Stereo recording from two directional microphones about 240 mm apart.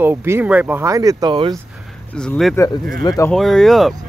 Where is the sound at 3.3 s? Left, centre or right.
Centre.